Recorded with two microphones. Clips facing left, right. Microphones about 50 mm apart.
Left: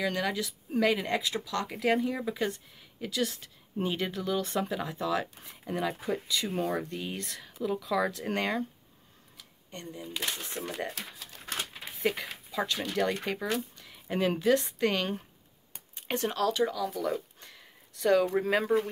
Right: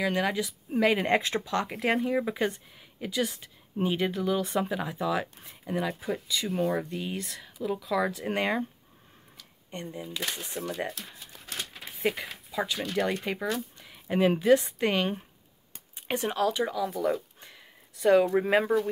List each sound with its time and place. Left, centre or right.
0.0 s speech: centre
0.9 s speech: right
1.7 s speech: centre
9.7 s speech: right
10.0 s speech: centre
10.4 s speech: left
10.9 s speech: left
12.0 s speech: centre
17.4 s a sound: centre